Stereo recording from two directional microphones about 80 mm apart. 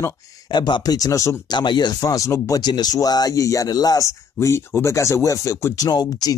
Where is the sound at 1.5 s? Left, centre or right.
Left.